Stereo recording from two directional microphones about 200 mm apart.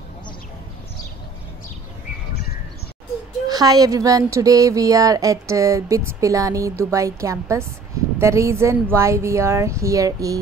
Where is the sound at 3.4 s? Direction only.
20° right (ahead or behind).